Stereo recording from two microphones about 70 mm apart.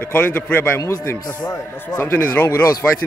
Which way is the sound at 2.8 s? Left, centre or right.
Centre.